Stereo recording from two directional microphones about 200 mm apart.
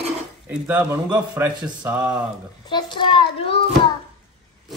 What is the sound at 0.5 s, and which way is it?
A man's voice, 10° right (ahead or behind).